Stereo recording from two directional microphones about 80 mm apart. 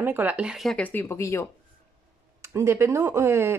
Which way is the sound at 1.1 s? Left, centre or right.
Left.